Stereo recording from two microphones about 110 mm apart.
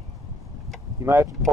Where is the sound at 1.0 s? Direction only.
20° right (ahead or behind).